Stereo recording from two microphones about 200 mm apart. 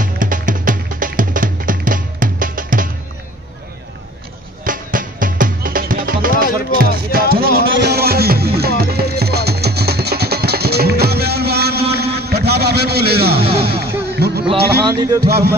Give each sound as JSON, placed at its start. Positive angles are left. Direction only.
{"t": 0.0, "sound": "music", "side_deg": -40}
{"t": 4.6, "sound": "music", "side_deg": -45}
{"t": 14.9, "sound": "music", "side_deg": -20}
{"t": 15.2, "sound": "music", "side_deg": -55}